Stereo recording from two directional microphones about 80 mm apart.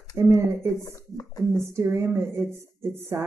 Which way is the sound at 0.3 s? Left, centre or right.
Right.